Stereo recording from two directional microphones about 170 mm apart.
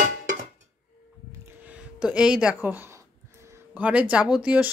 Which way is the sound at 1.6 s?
5° right (ahead or behind).